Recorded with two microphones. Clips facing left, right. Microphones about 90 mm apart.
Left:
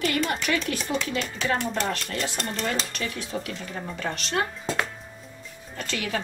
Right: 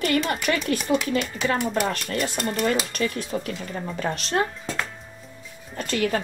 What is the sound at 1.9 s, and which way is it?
Speech, 50° right (ahead or behind).